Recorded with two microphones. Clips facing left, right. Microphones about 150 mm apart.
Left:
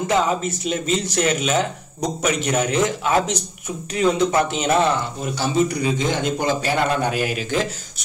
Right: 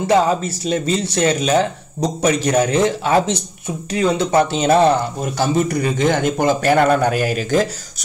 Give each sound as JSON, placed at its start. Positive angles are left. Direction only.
{"t": 0.0, "sound": "speech", "side_deg": -35}
{"t": 5.2, "sound": "a man's voice", "side_deg": -50}